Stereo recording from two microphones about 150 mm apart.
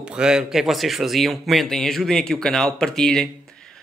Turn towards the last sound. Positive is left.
turn(degrees=5)  # may be behind; listen again after turning